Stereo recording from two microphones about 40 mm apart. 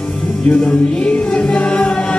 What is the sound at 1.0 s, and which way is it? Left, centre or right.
Music, left.